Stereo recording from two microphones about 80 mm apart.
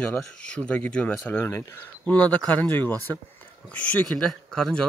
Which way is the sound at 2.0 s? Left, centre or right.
Centre.